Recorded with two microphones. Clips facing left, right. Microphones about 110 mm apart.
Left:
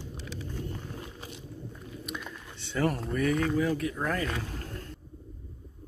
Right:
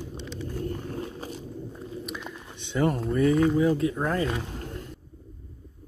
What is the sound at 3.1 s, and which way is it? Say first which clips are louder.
Speech: right 7 dB; 25° right (ahead or behind).